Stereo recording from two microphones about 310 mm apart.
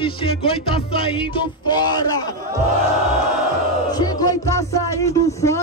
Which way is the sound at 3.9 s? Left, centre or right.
Centre.